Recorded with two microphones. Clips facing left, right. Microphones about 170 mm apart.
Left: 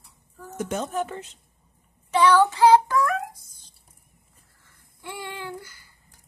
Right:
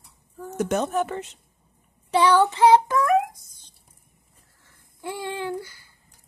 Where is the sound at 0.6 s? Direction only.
70° right (ahead or behind).